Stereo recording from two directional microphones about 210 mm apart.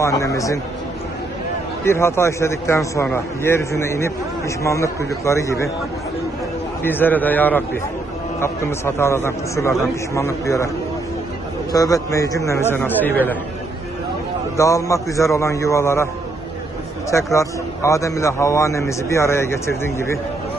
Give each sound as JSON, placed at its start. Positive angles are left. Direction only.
{"t": 0.0, "sound": "a man's voice", "side_deg": 15}
{"t": 1.9, "sound": "a man's voice", "side_deg": 10}
{"t": 6.8, "sound": "a man's voice", "side_deg": 10}
{"t": 11.7, "sound": "a man's voice", "side_deg": 15}
{"t": 14.6, "sound": "a man's voice", "side_deg": 15}
{"t": 17.1, "sound": "a man's voice", "side_deg": 15}